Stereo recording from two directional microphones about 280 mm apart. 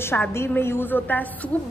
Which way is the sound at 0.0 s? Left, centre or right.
Centre.